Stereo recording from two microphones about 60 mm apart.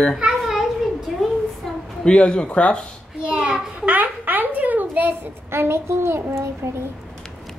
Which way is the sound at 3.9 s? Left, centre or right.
Right.